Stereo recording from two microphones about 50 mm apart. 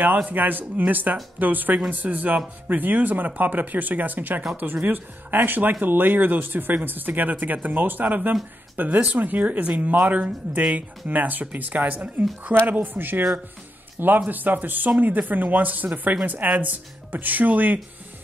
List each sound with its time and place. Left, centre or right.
0.3 s speech: right